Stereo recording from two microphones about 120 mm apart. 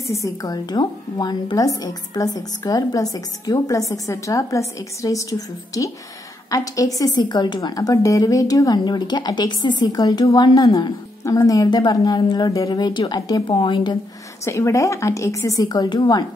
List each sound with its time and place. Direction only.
0.0 s a woman's voice: 25° left (ahead or behind); by 13.9 s 45° left (ahead or behind)
14.4 s a woman's voice: 25° left (ahead or behind)